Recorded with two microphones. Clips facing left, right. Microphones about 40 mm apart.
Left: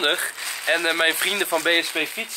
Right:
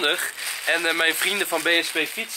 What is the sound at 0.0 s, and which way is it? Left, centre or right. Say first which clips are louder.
Speech: left 1 dB; centre.